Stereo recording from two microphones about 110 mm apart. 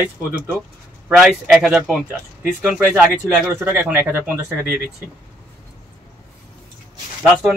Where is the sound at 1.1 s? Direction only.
5° right (ahead or behind).